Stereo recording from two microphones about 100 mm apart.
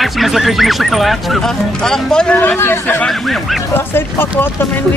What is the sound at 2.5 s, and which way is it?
Speech, 25° left (ahead or behind).